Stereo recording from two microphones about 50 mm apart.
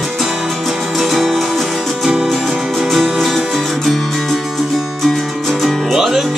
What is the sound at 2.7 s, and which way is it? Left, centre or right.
Music, centre.